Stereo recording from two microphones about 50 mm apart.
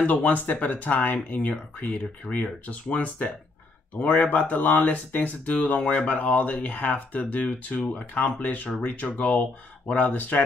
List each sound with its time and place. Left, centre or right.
0.0 s speech: left